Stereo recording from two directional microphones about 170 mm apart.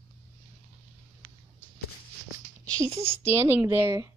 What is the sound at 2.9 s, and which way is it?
Speech, 35° right (ahead or behind).